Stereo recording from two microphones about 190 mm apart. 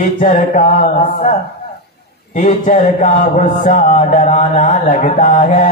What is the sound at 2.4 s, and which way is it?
Speech, 40° left (ahead or behind).